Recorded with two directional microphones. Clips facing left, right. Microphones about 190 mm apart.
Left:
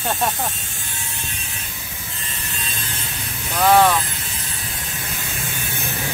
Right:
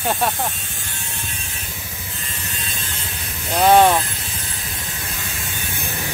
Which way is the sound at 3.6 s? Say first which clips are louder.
Right 2 dB; 25° right (ahead or behind).